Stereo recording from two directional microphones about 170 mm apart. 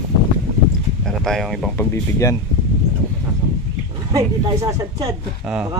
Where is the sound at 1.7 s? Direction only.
15° left (ahead or behind).